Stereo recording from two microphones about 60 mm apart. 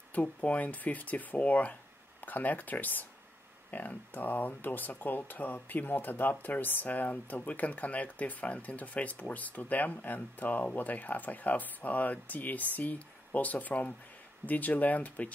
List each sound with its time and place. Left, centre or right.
0.1 s speech: left